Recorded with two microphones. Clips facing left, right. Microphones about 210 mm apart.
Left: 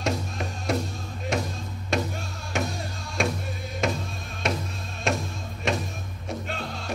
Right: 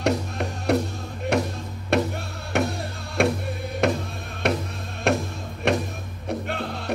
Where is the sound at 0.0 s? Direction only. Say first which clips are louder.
Right 5 dB; 60° right (ahead or behind).